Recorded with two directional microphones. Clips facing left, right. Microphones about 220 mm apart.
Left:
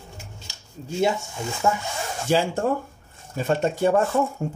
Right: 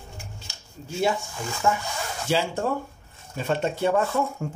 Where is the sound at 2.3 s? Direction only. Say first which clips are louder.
Left 3 dB; 45° left (ahead or behind).